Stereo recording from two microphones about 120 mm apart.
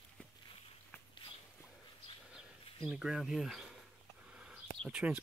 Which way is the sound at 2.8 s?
5° right (ahead or behind).